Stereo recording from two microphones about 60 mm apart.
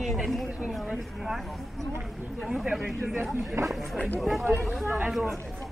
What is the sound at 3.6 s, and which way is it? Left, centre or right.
Speech, right.